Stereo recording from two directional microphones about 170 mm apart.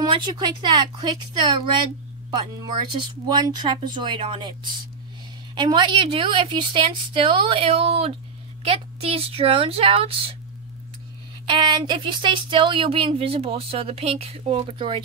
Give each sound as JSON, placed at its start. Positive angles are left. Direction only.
{"t": 0.0, "sound": "a woman's voice", "side_deg": -25}
{"t": 3.3, "sound": "a woman's voice", "side_deg": -25}
{"t": 5.5, "sound": "a woman's voice", "side_deg": -25}
{"t": 11.4, "sound": "a woman's voice", "side_deg": -25}